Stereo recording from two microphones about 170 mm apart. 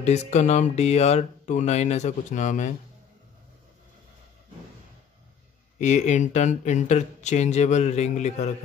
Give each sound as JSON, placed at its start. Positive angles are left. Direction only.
{"t": 0.0, "sound": "speech", "side_deg": 40}
{"t": 5.8, "sound": "speech", "side_deg": 45}